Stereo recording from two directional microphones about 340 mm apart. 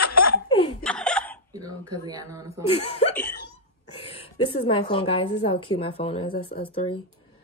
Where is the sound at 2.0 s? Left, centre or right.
Centre.